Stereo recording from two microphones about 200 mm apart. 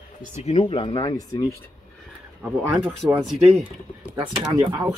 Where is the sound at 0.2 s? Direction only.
35° left (ahead or behind); by 1.6 s 15° left (ahead or behind).